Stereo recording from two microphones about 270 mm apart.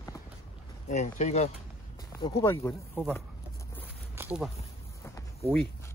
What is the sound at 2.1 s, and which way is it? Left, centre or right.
Speech, centre.